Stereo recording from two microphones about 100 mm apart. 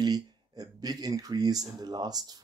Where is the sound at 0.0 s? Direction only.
40° right (ahead or behind).